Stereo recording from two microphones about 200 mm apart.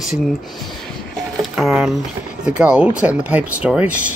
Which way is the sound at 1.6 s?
5° right (ahead or behind).